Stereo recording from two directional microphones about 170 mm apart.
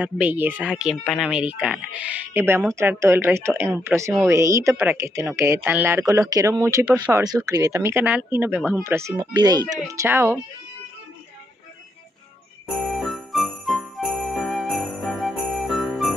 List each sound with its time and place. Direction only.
0.0 s speech: 10° right (ahead or behind)
9.3 s speech: 25° right (ahead or behind)
12.6 s jingle bell: centre (ahead or behind)